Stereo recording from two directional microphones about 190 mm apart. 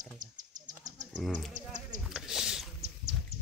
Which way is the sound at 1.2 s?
Centre (ahead or behind).